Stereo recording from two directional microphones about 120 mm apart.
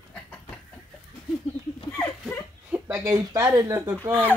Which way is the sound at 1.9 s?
20° left (ahead or behind).